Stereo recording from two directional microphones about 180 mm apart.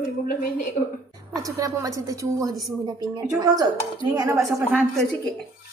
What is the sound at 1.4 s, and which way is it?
A woman's voice, 20° right (ahead or behind).